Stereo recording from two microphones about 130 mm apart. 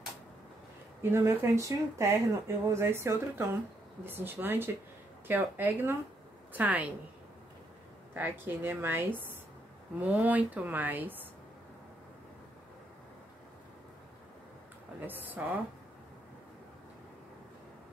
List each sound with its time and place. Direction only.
1.1 s speech: 20° right (ahead or behind)
8.1 s speech: 15° right (ahead or behind)
15.0 s speech: 15° right (ahead or behind)